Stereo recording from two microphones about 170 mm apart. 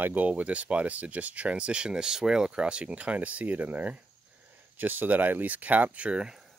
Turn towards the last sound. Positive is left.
turn(degrees=-5)  # may be behind; listen again after turning